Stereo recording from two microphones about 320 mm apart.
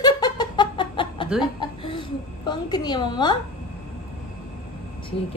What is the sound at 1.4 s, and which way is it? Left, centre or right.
A woman's voice, centre.